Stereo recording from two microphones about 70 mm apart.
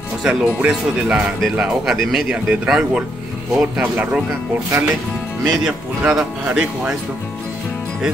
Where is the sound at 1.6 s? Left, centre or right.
Centre.